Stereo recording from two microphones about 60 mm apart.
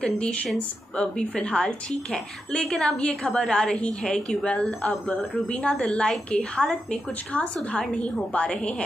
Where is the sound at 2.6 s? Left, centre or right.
Centre.